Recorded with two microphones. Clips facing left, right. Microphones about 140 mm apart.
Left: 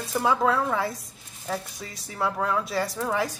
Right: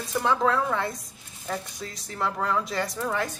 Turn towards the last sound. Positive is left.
turn(degrees=10)  # may be behind; listen again after turning